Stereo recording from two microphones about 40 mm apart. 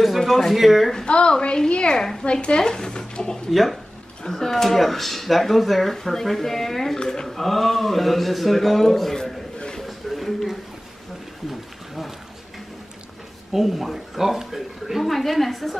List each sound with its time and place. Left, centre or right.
0.0 s a woman's voice: centre
1.0 s speech: left
3.4 s a woman's voice: centre
7.0 s speech: centre
7.2 s a woman's voice: centre
9.8 s a sound: centre
13.5 s a woman's voice: centre